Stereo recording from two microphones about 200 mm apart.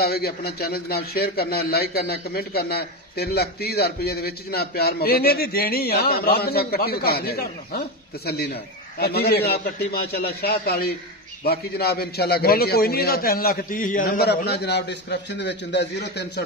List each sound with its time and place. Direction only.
0.0 s a man's voice: 50° left (ahead or behind)
8.9 s a man's voice: 50° left (ahead or behind)